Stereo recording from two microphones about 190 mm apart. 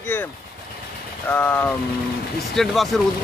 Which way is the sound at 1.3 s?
10° left (ahead or behind).